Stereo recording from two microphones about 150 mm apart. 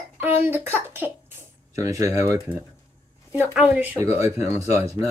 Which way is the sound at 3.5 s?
10° right (ahead or behind).